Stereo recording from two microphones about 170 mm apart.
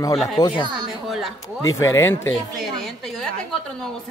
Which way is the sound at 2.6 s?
Centre (ahead or behind).